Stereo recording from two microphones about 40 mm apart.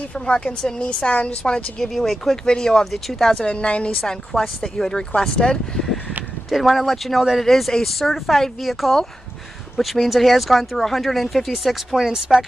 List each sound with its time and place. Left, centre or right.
0.1 s a woman's voice: left
2.0 s speech: centre
2.4 s speech: centre
3.4 s a woman's voice: left
4.0 s speech: centre
6.5 s speech: centre